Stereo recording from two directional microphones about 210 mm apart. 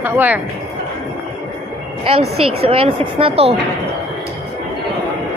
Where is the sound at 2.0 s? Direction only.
30° right (ahead or behind).